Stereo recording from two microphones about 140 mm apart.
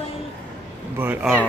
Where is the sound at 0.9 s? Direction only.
10° right (ahead or behind).